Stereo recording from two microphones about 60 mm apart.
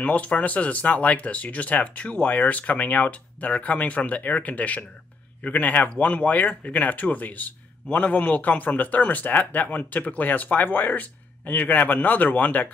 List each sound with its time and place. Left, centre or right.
0.0 s speech: left